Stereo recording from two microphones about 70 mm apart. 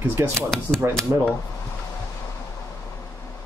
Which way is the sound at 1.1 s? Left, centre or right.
Right.